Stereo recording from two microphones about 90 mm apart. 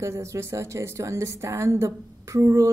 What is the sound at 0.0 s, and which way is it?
Speech, 30° right (ahead or behind).